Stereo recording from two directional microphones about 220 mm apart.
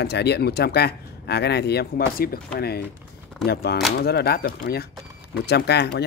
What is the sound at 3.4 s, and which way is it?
Speech, 45° left (ahead or behind).